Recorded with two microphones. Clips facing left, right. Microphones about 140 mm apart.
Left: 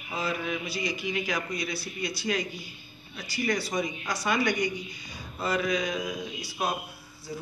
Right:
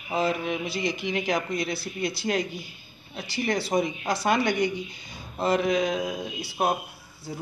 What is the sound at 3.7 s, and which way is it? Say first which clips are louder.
Speech: right 5 dB; 55° right (ahead or behind).